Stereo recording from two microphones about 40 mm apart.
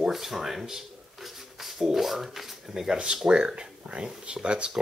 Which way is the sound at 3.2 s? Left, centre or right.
Right.